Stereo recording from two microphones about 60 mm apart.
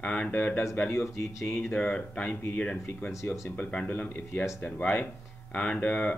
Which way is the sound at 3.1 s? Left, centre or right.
Left.